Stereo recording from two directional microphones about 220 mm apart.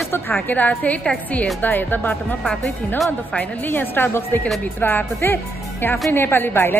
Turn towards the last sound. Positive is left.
turn(degrees=10)  # may be behind; listen again after turning